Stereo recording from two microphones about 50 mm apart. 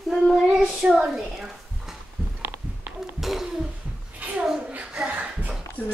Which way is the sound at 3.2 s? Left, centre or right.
Centre.